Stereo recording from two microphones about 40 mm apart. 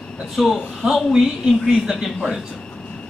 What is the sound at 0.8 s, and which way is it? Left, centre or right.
Speech, right.